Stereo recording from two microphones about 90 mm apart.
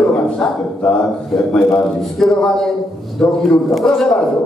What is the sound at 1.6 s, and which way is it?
Speech, 30° left (ahead or behind).